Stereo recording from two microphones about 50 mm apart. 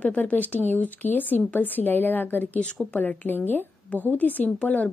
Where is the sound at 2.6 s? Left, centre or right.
Left.